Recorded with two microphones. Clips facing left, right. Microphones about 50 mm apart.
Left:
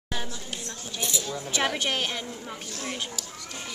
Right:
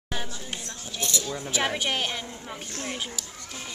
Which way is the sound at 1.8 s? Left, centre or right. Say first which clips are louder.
Even; centre.